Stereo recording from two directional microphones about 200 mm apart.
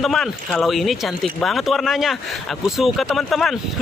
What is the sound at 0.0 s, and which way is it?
Speech, centre (ahead or behind).